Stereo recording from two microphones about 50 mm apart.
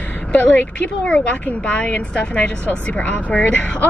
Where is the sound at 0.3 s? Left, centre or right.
Left.